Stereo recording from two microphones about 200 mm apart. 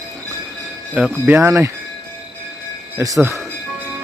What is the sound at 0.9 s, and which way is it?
Speech, 5° right (ahead or behind).